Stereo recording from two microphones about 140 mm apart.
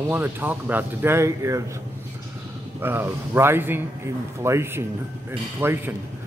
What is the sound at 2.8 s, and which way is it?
Speech, 15° right (ahead or behind).